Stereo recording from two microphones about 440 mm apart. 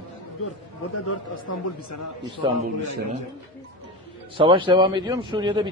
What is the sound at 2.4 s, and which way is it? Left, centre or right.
Speech, centre.